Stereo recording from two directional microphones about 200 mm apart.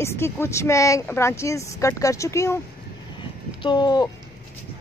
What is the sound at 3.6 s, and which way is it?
Speech, 25° left (ahead or behind).